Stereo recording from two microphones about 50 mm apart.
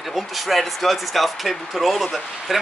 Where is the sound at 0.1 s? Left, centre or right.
Centre.